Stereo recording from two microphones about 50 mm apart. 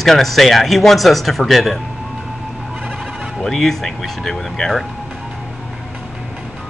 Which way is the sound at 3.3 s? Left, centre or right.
Centre.